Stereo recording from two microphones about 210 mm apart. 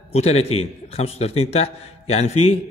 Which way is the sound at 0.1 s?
30° left (ahead or behind).